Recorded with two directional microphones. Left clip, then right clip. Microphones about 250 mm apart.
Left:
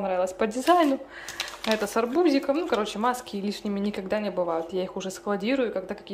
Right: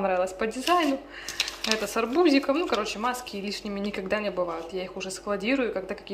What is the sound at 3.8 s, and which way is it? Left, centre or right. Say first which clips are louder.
Speech: right 1 dB; centre.